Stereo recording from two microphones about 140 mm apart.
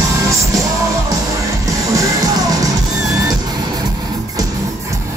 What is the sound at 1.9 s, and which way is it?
Music, 25° right (ahead or behind).